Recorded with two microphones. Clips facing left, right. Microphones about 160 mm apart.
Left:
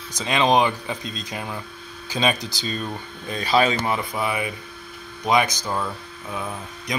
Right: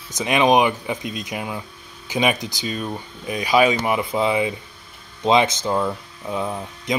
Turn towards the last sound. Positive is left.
turn(degrees=-25)  # may be behind; listen again after turning